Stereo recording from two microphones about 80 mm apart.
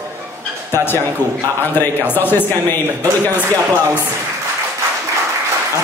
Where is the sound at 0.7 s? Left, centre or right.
Left.